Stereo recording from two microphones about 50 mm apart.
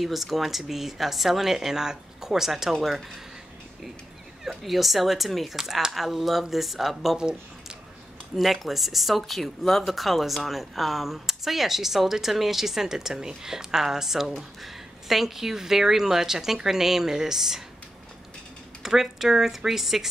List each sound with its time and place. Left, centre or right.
0.0 s speech: centre
4.5 s speech: centre
8.4 s a woman's voice: centre
18.8 s a woman's voice: centre